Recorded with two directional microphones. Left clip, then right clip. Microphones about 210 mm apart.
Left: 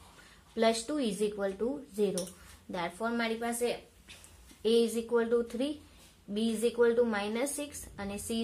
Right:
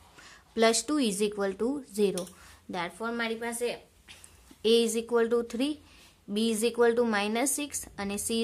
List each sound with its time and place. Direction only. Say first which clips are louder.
0.6 s a woman's voice: right 4 dB; 40° right (ahead or behind)